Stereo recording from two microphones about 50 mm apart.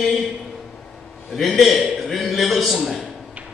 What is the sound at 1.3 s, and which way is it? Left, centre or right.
A man's voice, centre.